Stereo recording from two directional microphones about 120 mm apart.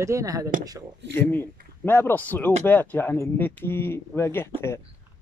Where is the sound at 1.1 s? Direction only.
15° left (ahead or behind).